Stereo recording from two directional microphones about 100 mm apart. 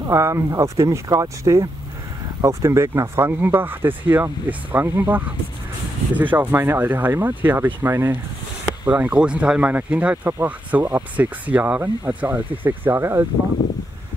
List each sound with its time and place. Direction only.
0.1 s speech: 30° right (ahead or behind)